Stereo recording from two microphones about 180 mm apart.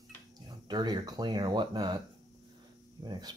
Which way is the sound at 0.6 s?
25° right (ahead or behind).